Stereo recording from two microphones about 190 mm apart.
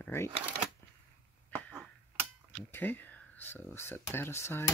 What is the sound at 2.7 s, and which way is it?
Speech, 10° left (ahead or behind).